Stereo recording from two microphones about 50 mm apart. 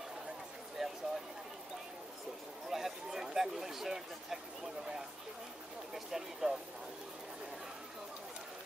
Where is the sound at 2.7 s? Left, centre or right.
Centre.